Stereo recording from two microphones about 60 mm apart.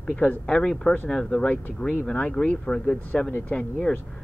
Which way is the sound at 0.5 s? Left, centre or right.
Centre.